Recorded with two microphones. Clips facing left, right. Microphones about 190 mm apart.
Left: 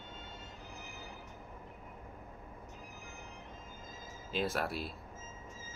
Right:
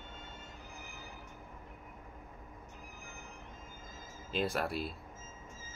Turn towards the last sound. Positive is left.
turn(degrees=0)  # may be behind; listen again after turning